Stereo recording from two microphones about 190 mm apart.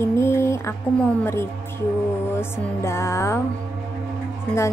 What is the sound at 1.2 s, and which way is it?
A woman's voice, 15° left (ahead or behind).